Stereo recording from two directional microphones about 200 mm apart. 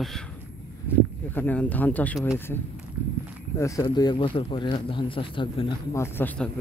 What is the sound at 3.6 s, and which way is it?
Speech, 15° left (ahead or behind).